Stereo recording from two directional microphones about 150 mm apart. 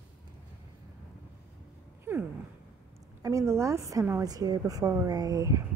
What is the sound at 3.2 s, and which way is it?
A woman's voice, 20° right (ahead or behind).